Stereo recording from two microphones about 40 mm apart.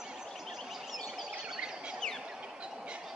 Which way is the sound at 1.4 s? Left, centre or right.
Right.